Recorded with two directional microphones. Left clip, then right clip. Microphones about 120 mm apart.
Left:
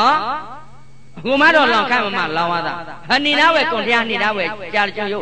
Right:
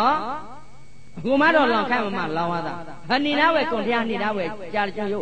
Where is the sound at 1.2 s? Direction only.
45° right (ahead or behind).